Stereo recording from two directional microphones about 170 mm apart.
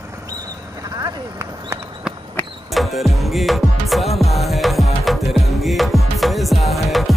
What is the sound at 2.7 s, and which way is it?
Music, centre (ahead or behind).